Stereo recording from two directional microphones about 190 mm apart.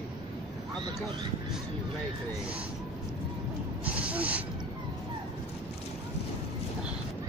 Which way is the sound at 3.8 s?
5° right (ahead or behind).